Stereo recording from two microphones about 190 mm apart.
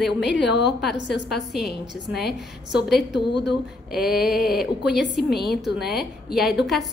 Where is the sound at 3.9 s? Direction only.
Centre (ahead or behind).